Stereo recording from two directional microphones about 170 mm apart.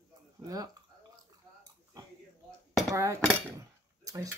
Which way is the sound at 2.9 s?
20° right (ahead or behind).